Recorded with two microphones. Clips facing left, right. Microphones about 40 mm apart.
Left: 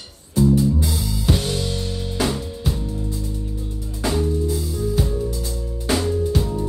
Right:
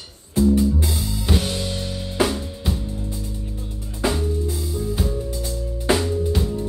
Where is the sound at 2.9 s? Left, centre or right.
Right.